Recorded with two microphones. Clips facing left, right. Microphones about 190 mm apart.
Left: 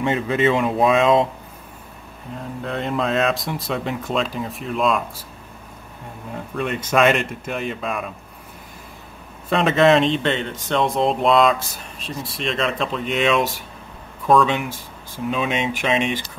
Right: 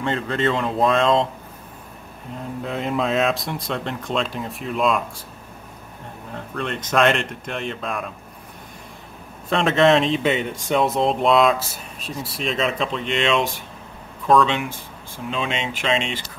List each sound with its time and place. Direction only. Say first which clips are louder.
0.0 s speech: left 3 dB; 10° left (ahead or behind)
2.3 s speech: even; centre (ahead or behind)
6.5 s speech: left 2 dB; 10° left (ahead or behind)
9.5 s speech: left 1 dB; centre (ahead or behind)